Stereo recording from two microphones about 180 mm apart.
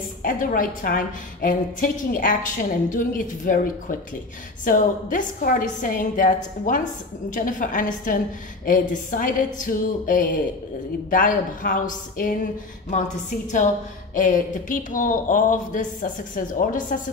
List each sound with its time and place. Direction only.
0.2 s a woman's voice: 50° left (ahead or behind)
14.1 s a woman's voice: 45° left (ahead or behind)